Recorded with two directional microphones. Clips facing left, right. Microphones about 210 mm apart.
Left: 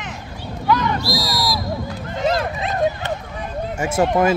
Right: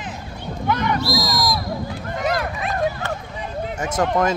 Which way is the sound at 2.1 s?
25° left (ahead or behind).